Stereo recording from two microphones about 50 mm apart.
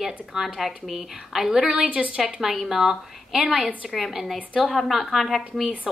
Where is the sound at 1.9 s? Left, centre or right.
Right.